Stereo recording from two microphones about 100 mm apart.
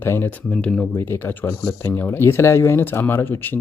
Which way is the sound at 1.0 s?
20° left (ahead or behind).